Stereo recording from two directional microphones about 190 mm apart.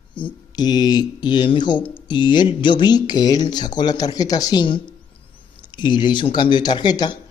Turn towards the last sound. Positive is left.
turn(degrees=20)  # may be behind; listen again after turning